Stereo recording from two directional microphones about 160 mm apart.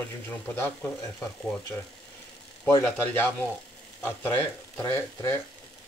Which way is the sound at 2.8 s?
10° left (ahead or behind).